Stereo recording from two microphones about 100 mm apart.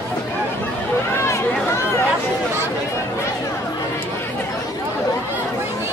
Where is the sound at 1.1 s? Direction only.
30° left (ahead or behind).